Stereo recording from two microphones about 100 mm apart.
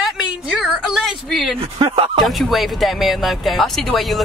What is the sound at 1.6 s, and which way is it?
Speech, 70° right (ahead or behind).